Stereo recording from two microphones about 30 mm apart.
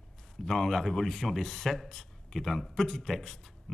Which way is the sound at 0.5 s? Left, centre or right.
Centre.